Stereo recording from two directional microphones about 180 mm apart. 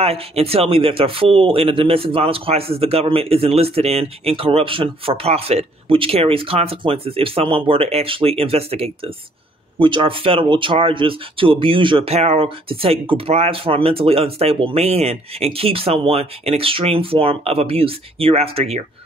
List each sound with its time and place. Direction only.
0.0 s speech: 35° right (ahead or behind)